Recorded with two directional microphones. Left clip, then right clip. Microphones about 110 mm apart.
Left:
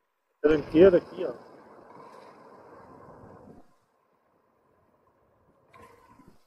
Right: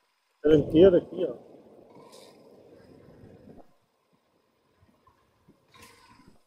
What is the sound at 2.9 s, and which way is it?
Vehicle, 40° right (ahead or behind).